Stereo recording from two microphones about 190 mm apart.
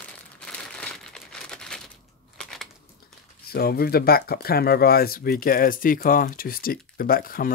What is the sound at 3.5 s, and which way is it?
Speech, 55° left (ahead or behind).